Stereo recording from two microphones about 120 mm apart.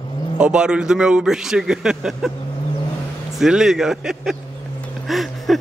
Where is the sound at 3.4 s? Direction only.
5° right (ahead or behind).